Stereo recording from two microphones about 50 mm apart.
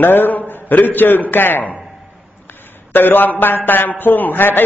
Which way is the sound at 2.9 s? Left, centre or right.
Left.